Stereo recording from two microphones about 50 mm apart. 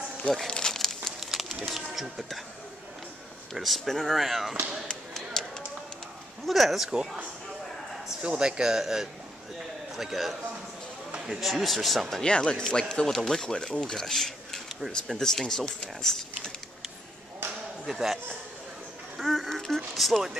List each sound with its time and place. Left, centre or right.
0.5 s a sound: centre
1.2 s speech: centre
3.5 s speech: centre
5.4 s run: centre
6.4 s speech: centre
8.1 s a man's voice: centre
11.1 s a sound: centre
11.3 s speech: centre
12.2 s speech: centre
17.8 s speech: centre
19.1 s duck: centre
19.6 s speech: centre